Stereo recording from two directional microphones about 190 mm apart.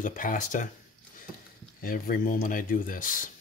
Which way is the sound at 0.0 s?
45° left (ahead or behind).